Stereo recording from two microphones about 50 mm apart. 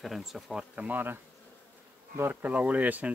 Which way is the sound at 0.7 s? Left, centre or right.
Right.